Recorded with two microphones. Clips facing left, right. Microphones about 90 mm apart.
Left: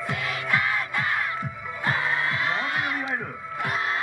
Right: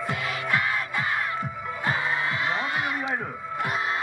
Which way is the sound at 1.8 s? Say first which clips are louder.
Left 1 dB; 20° right (ahead or behind).